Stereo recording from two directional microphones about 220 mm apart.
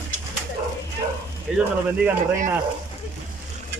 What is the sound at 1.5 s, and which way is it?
Speech, 5° right (ahead or behind).